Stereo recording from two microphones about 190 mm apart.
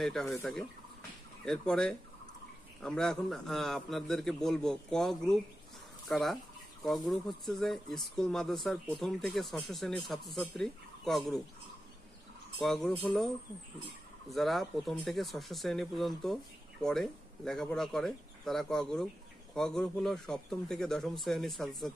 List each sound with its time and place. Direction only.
0.0 s speech: centre (ahead or behind)
12.5 s speech: 5° left (ahead or behind)
14.3 s speech: centre (ahead or behind)